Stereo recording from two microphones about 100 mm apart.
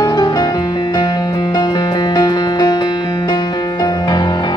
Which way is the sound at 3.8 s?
45° left (ahead or behind).